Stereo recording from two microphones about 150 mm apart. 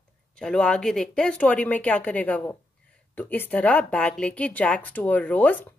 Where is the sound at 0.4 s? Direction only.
5° left (ahead or behind).